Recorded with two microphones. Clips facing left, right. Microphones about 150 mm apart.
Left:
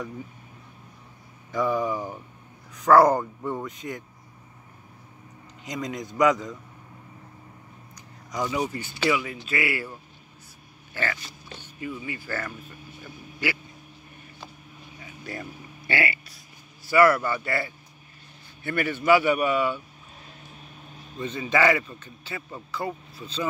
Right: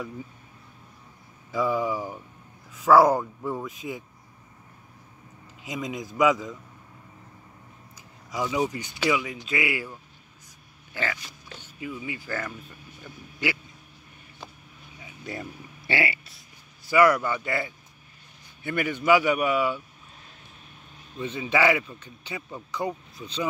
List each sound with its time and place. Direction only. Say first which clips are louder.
1.5 s speech: even; 5° right (ahead or behind)
5.7 s speech: even; 5° right (ahead or behind)
7.9 s a sound: even; 5° right (ahead or behind)
8.5 s speech: right 1 dB; 15° right (ahead or behind)
10.9 s speech: left 1 dB; 15° right (ahead or behind)
15.0 s vehicle: right 1 dB; 20° right (ahead or behind)
15.9 s speech: even; 25° right (ahead or behind)
21.2 s speech: left 1 dB; 10° right (ahead or behind)